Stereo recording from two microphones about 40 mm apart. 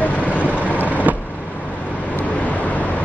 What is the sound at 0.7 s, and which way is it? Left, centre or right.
Vehicle, left.